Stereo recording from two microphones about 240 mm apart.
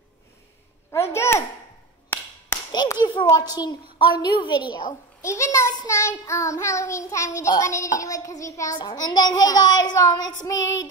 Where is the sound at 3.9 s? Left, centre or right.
Centre.